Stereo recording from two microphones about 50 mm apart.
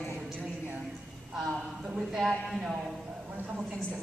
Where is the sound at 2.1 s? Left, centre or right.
Centre.